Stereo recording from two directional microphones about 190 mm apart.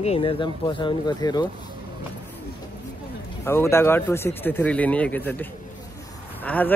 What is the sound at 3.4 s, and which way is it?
Speech, 15° left (ahead or behind).